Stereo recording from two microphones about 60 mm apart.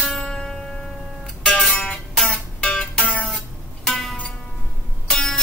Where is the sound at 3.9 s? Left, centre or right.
Centre.